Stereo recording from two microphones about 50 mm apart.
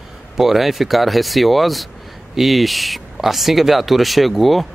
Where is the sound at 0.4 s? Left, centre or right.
Centre.